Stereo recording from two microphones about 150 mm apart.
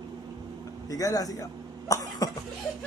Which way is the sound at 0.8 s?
25° left (ahead or behind).